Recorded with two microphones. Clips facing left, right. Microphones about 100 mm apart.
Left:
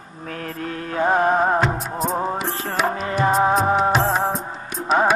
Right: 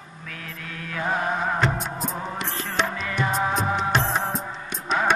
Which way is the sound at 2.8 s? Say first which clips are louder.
Left 7 dB; 40° left (ahead or behind).